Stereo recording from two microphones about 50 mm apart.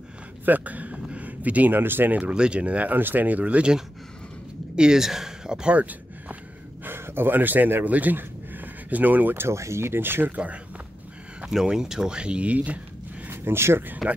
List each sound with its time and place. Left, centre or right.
0.5 s speech: right
0.9 s a sound: centre
1.2 s a sound: right
1.8 s speech: right
2.3 s speech: centre
4.7 s speech: centre
5.8 s a sound: right
6.8 s speech: right
9.3 s speech: right
9.6 s speech: right
10.3 s speech: right
11.4 s speech: centre; by 12.8 s right
13.3 s speech: right